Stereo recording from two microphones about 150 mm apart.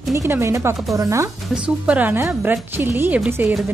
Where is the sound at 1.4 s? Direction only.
5° right (ahead or behind).